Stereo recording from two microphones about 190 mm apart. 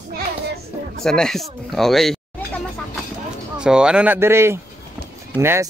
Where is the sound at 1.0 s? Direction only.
5° left (ahead or behind).